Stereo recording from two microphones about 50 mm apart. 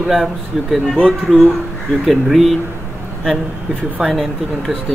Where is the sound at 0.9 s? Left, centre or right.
Centre.